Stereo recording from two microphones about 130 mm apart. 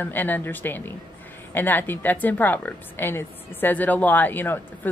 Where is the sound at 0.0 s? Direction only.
15° left (ahead or behind).